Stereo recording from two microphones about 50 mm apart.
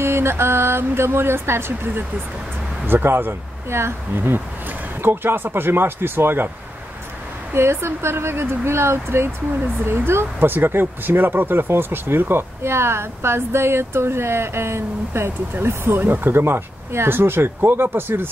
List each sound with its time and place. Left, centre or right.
0.0 s speech: right
7.5 s speech: right
16.0 s speech: right